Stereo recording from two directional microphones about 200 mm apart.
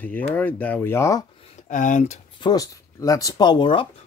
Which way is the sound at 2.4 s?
20° left (ahead or behind).